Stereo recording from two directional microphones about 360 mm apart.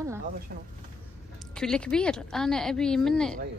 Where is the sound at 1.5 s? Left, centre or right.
Centre.